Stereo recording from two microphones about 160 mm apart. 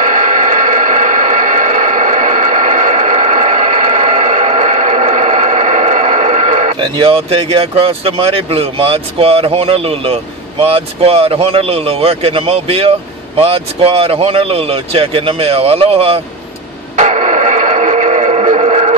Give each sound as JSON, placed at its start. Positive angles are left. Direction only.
{"t": 0.0, "sound": "a sound", "side_deg": -55}
{"t": 6.8, "sound": "speech", "side_deg": -35}
{"t": 16.9, "sound": "radio", "side_deg": -45}